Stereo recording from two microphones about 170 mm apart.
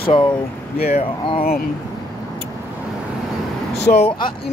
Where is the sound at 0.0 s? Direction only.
30° left (ahead or behind).